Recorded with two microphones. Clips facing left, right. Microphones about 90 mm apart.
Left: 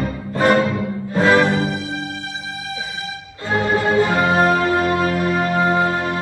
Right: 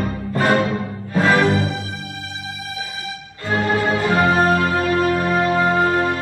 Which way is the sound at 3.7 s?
30° left (ahead or behind).